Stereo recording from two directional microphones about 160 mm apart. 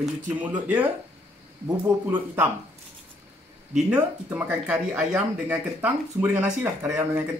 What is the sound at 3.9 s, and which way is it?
Speech, 10° right (ahead or behind).